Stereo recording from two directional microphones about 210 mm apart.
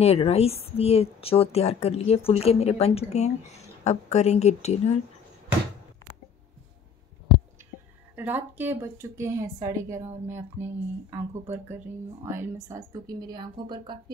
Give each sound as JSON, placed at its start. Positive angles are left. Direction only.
{"t": 0.0, "sound": "a woman's voice", "side_deg": 30}
{"t": 8.2, "sound": "speech", "side_deg": -10}